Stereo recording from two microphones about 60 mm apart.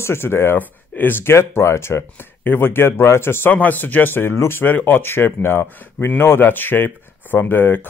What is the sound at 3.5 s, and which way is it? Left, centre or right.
Speech, left.